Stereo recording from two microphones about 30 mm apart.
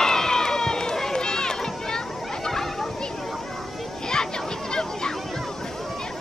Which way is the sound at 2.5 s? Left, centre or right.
Centre.